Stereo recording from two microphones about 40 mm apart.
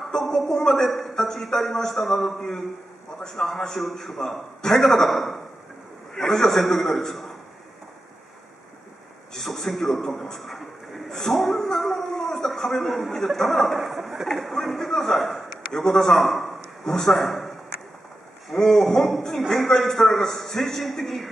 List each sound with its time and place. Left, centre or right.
0.0 s a man's voice: centre
0.8 s a man's voice: centre
4.6 s a man's voice: centre
4.8 s a man's voice: centre
9.3 s a man's voice: centre
11.1 s a sound: centre
14.2 s a man's voice: centre
16.8 s speech: centre
17.1 s speech: centre
18.5 s a man's voice: centre